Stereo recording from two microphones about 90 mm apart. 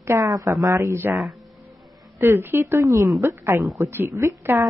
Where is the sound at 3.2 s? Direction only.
30° right (ahead or behind).